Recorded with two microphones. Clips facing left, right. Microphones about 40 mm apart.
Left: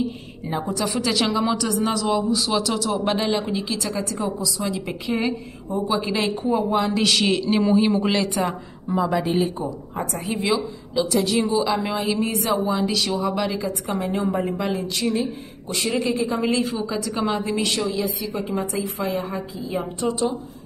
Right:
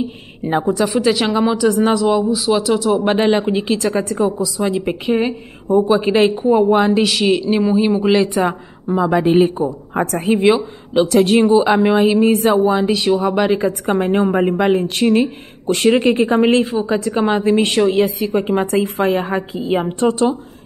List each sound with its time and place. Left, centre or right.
0.4 s speech: right
1.4 s speech: centre
1.7 s speech: right
2.0 s speech: centre
3.2 s speech: right
5.3 s a woman's voice: right
7.0 s speech: centre
8.2 s a woman's voice: right
13.2 s a woman's voice: right